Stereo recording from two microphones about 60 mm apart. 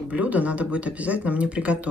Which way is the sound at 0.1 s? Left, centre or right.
Right.